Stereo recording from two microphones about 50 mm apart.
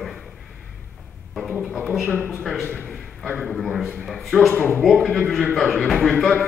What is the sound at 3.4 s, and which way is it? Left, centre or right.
A man's voice, centre.